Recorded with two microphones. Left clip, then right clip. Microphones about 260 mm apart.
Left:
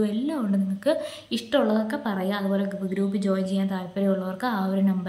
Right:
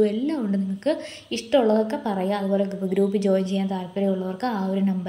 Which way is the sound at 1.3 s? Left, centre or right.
Centre.